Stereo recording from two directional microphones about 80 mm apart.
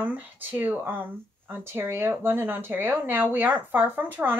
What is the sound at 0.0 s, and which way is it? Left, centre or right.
Speech, centre.